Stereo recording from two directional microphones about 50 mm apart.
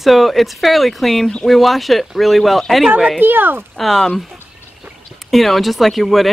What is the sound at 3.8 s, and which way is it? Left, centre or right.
Speech, centre.